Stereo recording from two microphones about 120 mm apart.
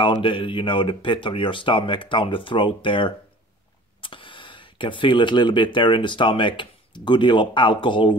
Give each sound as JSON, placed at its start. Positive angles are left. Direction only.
{"t": 0.0, "sound": "speech", "side_deg": 45}